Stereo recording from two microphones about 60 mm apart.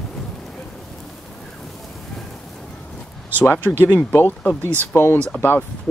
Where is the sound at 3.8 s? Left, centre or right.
Left.